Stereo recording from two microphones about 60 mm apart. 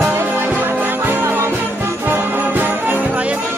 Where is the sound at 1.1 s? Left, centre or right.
Right.